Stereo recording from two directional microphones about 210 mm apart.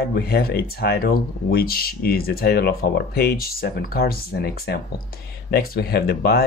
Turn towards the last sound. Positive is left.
turn(degrees=50)  # may be behind; listen again after turning